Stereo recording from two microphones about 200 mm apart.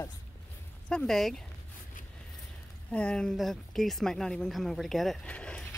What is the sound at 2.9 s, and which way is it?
Speech, 5° left (ahead or behind).